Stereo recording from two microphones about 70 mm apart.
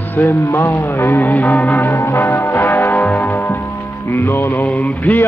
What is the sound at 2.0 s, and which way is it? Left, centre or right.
Music, left.